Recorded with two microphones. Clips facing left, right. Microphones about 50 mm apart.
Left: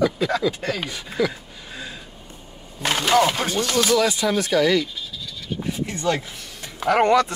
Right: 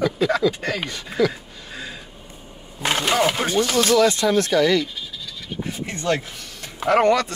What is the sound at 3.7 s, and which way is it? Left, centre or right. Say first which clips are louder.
Speech: right 2 dB; centre.